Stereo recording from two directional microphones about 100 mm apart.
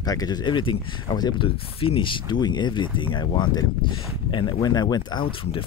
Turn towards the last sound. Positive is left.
turn(degrees=65)  # may be behind; listen again after turning